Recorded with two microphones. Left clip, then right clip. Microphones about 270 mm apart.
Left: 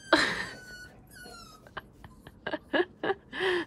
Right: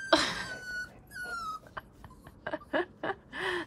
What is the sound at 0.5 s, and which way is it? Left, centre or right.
Dog, centre.